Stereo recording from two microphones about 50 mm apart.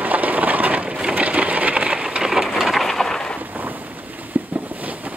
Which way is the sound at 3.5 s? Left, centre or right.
Right.